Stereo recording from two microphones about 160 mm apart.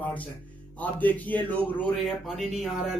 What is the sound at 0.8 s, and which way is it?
A man's voice, 10° left (ahead or behind).